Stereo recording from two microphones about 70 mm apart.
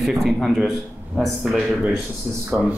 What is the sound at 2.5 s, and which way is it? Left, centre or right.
Speech, right.